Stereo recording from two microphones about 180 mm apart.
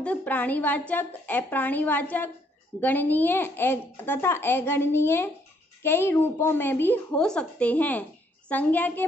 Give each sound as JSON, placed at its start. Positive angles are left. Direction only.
{"t": 0.0, "sound": "a woman's voice", "side_deg": 10}